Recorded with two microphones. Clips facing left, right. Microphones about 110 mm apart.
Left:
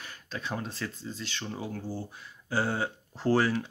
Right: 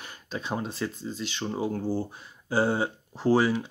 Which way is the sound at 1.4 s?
30° right (ahead or behind).